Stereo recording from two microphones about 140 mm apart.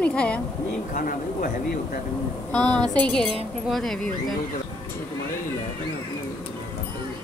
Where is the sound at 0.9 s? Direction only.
85° left.